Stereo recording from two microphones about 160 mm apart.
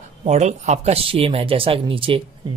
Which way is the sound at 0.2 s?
45° right (ahead or behind).